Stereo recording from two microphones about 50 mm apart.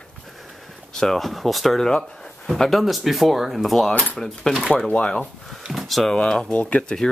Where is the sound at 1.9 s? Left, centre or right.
Centre.